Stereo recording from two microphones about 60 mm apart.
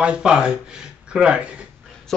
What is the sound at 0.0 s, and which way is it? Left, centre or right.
Speech, centre.